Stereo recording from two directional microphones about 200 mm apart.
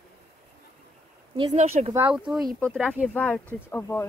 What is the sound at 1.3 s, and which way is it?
Speech, 30° right (ahead or behind).